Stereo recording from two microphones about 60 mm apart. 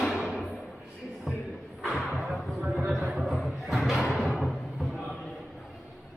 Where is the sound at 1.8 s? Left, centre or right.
Centre.